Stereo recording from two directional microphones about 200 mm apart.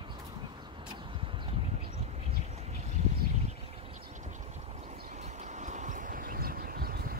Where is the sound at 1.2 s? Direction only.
25° right (ahead or behind).